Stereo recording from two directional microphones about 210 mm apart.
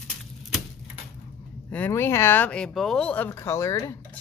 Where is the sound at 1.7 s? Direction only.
10° left (ahead or behind).